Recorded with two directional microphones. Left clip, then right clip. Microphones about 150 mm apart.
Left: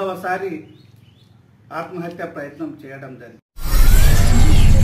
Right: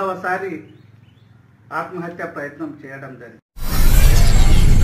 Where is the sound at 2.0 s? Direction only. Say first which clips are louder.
Right 1 dB; 35° left (ahead or behind).